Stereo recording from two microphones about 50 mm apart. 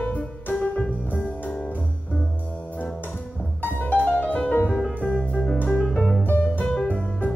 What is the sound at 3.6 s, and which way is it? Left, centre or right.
Music, left.